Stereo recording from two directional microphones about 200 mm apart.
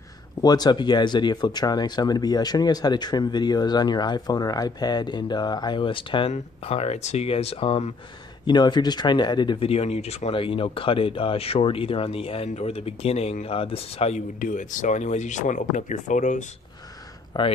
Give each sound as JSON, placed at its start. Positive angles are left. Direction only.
{"t": 0.4, "sound": "speech", "side_deg": 20}
{"t": 17.3, "sound": "speech", "side_deg": 20}